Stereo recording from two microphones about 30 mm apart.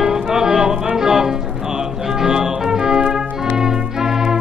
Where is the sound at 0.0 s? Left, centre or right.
Centre.